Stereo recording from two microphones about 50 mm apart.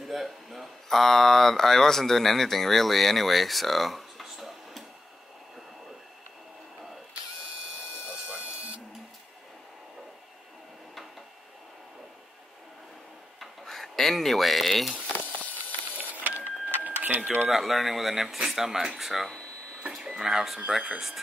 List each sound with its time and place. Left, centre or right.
0.0 s speech: centre
8.1 s a sound: right
13.4 s a sound: centre
16.0 s printer: right
17.5 s speech: centre
19.9 s speech: centre